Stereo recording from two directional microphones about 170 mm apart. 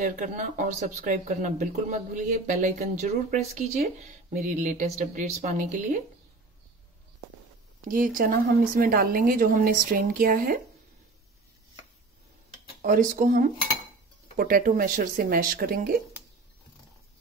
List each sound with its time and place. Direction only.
0.0 s speech: 50° right (ahead or behind)
7.9 s speech: 55° right (ahead or behind)
12.8 s speech: 50° right (ahead or behind)